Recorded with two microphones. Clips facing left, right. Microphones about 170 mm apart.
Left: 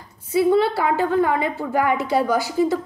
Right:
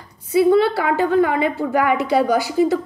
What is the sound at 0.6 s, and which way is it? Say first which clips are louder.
A woman's voice: right 2 dB; 70° right (ahead or behind).